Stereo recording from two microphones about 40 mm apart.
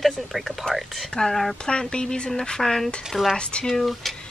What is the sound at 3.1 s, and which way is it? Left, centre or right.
Speech, centre.